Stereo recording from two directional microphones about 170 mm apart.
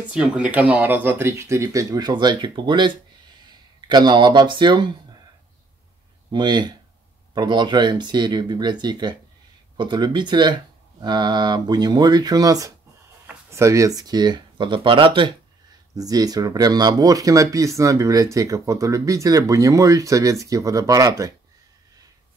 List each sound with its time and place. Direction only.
0.1 s speech: 5° right (ahead or behind); by 4.9 s 25° right (ahead or behind)
6.3 s speech: 25° right (ahead or behind)